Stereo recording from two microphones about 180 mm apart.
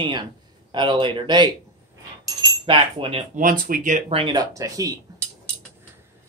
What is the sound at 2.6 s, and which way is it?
Speech, 30° right (ahead or behind).